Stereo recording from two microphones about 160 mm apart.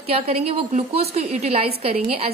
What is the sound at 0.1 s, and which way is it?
A woman's voice, 40° right (ahead or behind).